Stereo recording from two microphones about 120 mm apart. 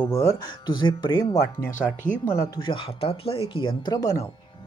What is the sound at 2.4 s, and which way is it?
Speech, 35° left (ahead or behind).